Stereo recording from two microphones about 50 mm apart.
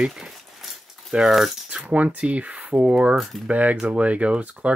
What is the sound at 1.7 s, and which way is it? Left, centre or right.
Speech, right.